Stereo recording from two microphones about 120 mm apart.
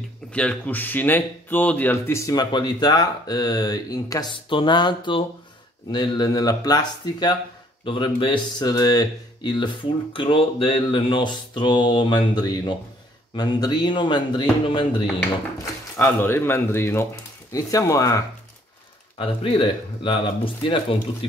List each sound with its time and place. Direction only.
0.3 s speech: 10° left (ahead or behind); by 15.0 s 45° left (ahead or behind)
15.6 s speech: 20° left (ahead or behind)
19.1 s speech: 45° left (ahead or behind)